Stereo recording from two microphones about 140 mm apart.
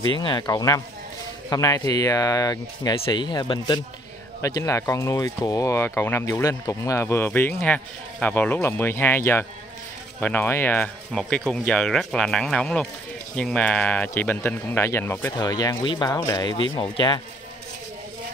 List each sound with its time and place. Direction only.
0.1 s speech: 35° left (ahead or behind); by 15.3 s 15° left (ahead or behind)
15.3 s speech: 30° left (ahead or behind)